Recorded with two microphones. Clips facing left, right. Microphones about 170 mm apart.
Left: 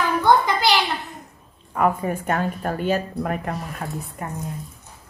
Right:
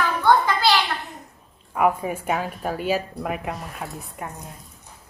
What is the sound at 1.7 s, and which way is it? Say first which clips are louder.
Speech: even; centre (ahead or behind).